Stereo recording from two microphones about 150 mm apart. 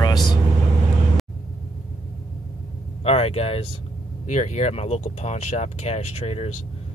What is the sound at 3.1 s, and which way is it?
Speech, 40° left (ahead or behind).